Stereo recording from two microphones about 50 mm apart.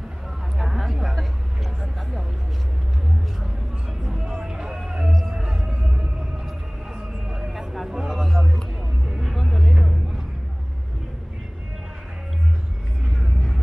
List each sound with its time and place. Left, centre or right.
0.6 s vehicle: centre
4.0 s music: centre
5.9 s whale vocalization: centre
7.2 s vehicle: centre
7.5 s a sound: centre
9.1 s music: centre